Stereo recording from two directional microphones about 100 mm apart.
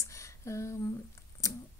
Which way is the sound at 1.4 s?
35° left (ahead or behind).